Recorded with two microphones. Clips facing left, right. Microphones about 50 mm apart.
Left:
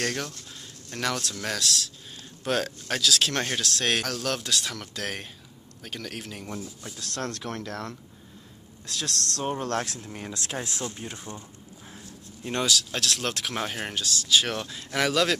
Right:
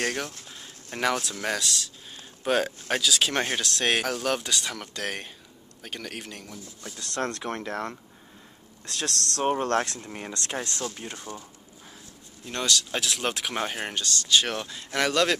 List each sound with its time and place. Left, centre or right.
0.0 s speech: centre
8.8 s speech: centre
9.4 s speech: right
10.3 s speech: centre
12.6 s speech: centre